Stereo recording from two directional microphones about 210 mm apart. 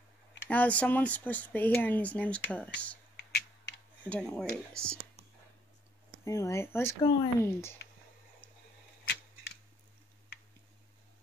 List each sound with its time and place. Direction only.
0.5 s speech: 5° left (ahead or behind)
3.3 s computer keyboard: 50° left (ahead or behind)
4.1 s speech: 5° left (ahead or behind)
6.2 s speech: 15° left (ahead or behind)